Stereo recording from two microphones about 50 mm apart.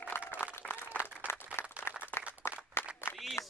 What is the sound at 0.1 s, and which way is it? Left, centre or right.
Applause, left.